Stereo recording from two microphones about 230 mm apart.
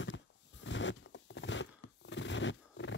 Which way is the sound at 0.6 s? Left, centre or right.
Left.